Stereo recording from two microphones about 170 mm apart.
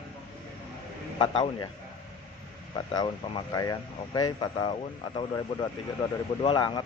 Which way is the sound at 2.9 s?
25° left (ahead or behind).